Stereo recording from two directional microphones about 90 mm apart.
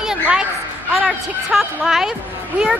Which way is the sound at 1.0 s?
5° right (ahead or behind).